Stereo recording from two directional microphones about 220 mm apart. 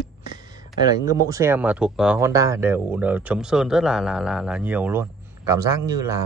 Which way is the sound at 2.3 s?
15° right (ahead or behind).